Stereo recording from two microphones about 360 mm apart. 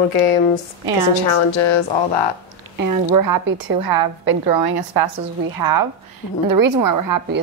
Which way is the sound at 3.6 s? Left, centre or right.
Right.